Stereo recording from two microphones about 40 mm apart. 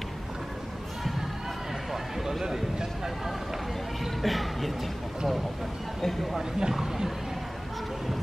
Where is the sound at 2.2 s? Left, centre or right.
Centre.